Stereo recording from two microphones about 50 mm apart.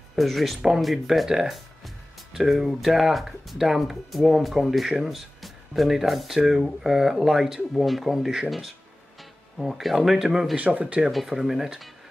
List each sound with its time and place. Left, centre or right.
0.1 s speech: centre
9.6 s speech: centre
10.5 s speech: right
11.1 s speech: centre